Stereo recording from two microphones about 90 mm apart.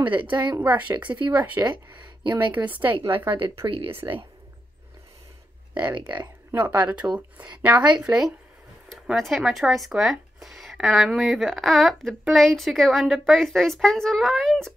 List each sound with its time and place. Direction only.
0.3 s speech: 55° right (ahead or behind)
0.6 s speech: 20° right (ahead or behind)
0.9 s speech: 60° right (ahead or behind)
1.3 s speech: 20° right (ahead or behind)
2.9 s a woman's voice: 65° right (ahead or behind)
5.9 s speech: 55° right (ahead or behind)
6.5 s speech: 20° right (ahead or behind)
9.0 s speech: centre (ahead or behind)